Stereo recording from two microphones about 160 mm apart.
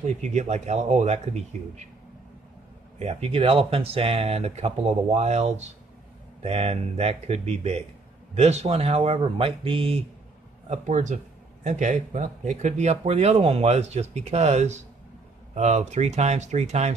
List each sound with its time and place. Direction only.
0.0 s speech: 45° right (ahead or behind)
3.0 s speech: 40° right (ahead or behind)
10.7 s speech: 50° right (ahead or behind)